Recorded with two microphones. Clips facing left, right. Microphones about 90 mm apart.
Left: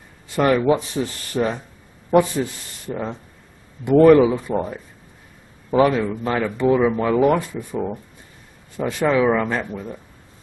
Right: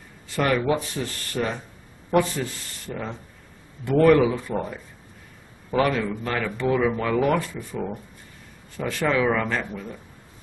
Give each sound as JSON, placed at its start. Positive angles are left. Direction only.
{"t": 0.4, "sound": "speech", "side_deg": 20}
{"t": 5.7, "sound": "speech", "side_deg": 20}
{"t": 8.7, "sound": "speech", "side_deg": 20}